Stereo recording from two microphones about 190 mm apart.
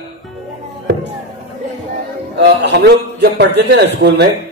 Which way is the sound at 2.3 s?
65° right (ahead or behind).